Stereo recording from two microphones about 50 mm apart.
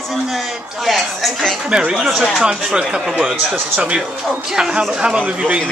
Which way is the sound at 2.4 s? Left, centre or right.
Centre.